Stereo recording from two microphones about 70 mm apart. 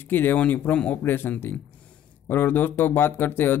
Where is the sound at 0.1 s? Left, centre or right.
Left.